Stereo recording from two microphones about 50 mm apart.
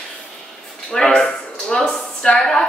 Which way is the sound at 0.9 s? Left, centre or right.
Centre.